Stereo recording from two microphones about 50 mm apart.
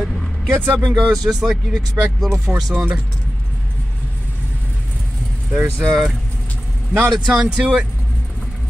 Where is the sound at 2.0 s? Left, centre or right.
Right.